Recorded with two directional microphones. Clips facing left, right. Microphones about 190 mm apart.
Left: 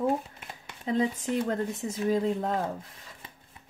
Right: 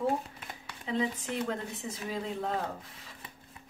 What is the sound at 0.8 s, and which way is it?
Speech, 40° left (ahead or behind).